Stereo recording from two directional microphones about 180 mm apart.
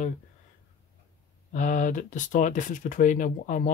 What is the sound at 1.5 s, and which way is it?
Speech, 45° left (ahead or behind).